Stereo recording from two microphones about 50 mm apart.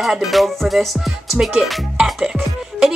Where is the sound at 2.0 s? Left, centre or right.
Centre.